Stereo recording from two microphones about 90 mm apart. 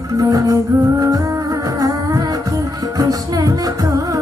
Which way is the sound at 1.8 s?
40° right (ahead or behind).